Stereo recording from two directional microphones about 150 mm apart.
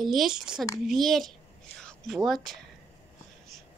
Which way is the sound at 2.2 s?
Centre (ahead or behind).